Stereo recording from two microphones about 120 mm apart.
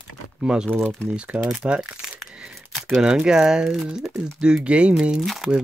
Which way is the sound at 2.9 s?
5° right (ahead or behind).